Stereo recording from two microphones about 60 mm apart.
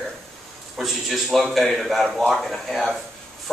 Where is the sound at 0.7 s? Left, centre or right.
Centre.